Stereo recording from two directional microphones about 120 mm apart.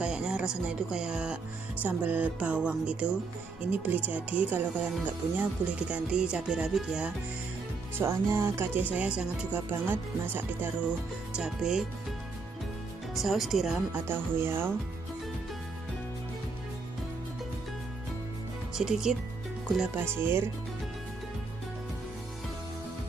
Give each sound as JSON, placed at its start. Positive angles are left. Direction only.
{"t": 0.0, "sound": "speech", "side_deg": -5}
{"t": 8.0, "sound": "speech", "side_deg": -20}
{"t": 11.3, "sound": "speech", "side_deg": -5}
{"t": 13.1, "sound": "speech", "side_deg": 0}
{"t": 13.9, "sound": "speech", "side_deg": -15}
{"t": 18.8, "sound": "speech", "side_deg": -5}
{"t": 20.0, "sound": "speech", "side_deg": -20}